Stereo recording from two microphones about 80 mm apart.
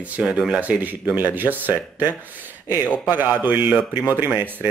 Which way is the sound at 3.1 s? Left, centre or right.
Right.